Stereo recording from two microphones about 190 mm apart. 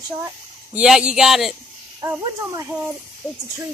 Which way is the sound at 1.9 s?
15° right (ahead or behind).